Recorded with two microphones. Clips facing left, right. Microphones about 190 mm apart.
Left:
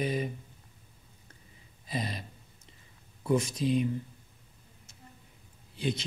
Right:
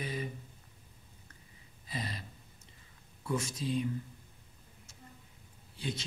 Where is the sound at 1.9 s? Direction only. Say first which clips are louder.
Left 5 dB; 20° left (ahead or behind).